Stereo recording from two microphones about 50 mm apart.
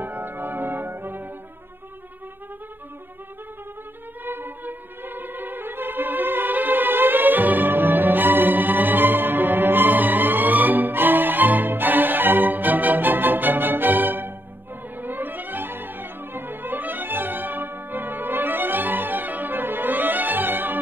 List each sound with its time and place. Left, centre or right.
0.0 s music: right
4.2 s music: right